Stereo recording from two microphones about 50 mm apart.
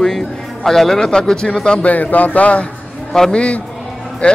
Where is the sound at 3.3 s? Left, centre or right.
Left.